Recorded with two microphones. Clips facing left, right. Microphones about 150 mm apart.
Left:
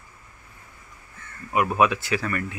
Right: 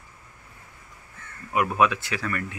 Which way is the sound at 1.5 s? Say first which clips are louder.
Left 1 dB; 5° left (ahead or behind).